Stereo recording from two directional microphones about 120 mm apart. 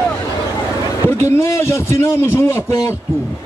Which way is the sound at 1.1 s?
20° left (ahead or behind).